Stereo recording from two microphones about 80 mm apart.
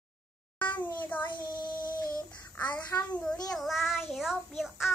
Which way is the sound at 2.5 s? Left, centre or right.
Centre.